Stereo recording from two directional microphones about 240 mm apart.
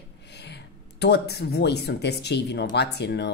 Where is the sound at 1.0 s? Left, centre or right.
Left.